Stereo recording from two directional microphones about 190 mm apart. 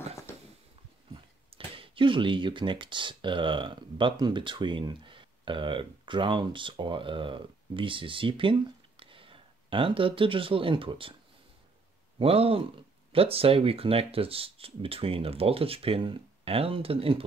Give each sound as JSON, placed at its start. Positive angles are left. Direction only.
{"t": 1.1, "sound": "speech", "side_deg": -30}
{"t": 12.2, "sound": "speech", "side_deg": -30}